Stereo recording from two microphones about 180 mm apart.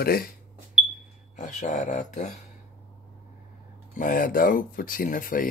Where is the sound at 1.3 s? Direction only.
45° left (ahead or behind).